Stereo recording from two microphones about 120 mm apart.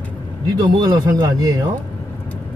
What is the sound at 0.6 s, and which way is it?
Speech, 35° right (ahead or behind).